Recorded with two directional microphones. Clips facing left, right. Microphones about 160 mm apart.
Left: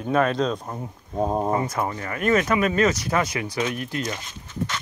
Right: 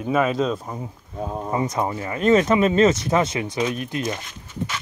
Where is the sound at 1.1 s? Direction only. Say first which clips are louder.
Left 6 dB; 35° left (ahead or behind).